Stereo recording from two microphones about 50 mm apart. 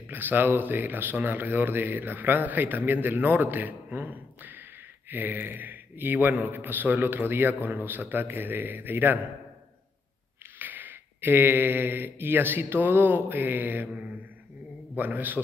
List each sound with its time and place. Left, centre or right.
0.1 s speech: right
10.6 s speech: right